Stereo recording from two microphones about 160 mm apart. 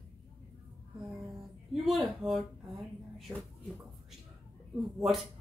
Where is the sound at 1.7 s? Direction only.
Centre (ahead or behind).